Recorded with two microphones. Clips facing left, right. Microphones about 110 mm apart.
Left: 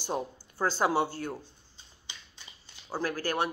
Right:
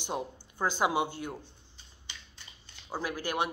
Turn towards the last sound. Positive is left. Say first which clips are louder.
# left 2 dB
turn(degrees=-15)  # may be behind; listen again after turning